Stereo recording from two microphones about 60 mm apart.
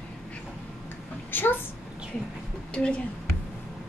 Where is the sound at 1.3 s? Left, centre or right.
Left.